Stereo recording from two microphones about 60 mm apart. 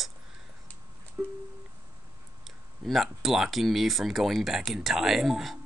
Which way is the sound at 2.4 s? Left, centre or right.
Centre.